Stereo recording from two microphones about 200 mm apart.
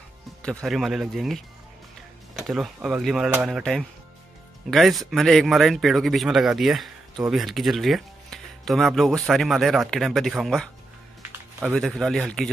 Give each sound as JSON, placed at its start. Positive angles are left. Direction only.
{"t": 0.4, "sound": "a man's voice", "side_deg": 5}
{"t": 11.8, "sound": "a man's voice", "side_deg": 0}